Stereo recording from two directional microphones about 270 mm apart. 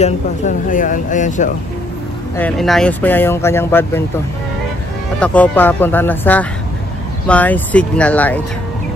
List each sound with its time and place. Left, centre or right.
0.0 s speech: left
2.3 s speech: centre
5.2 s speech: centre